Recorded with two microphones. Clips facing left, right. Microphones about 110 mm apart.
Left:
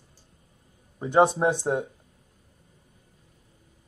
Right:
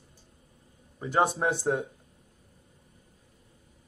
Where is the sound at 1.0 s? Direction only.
20° left (ahead or behind).